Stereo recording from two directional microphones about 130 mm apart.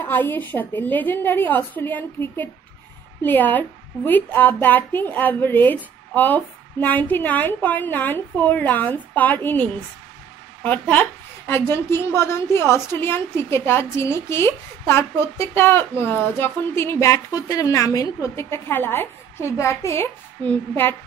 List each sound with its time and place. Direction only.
0.0 s a woman's voice: 15° left (ahead or behind)